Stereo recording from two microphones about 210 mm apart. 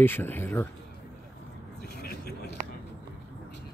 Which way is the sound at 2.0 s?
50° left (ahead or behind).